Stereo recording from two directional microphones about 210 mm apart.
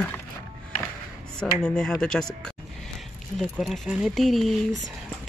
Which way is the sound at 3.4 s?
Centre (ahead or behind).